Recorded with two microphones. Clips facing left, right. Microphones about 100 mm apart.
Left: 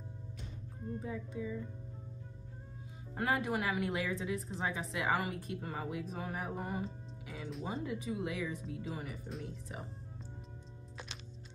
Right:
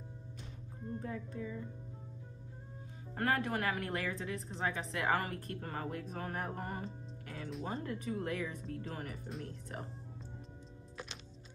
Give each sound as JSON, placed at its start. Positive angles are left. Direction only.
{"t": 0.9, "sound": "speech", "side_deg": 5}
{"t": 3.2, "sound": "speech", "side_deg": 10}